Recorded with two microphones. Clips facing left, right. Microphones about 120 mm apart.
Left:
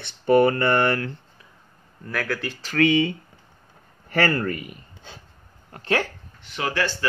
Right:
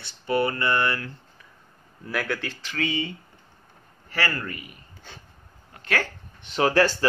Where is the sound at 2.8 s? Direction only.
70° left (ahead or behind).